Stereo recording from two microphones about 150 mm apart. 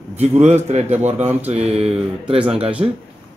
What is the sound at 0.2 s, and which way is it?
Speech, 45° right (ahead or behind).